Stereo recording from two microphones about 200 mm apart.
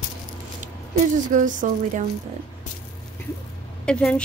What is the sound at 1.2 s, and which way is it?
Speech, 40° right (ahead or behind).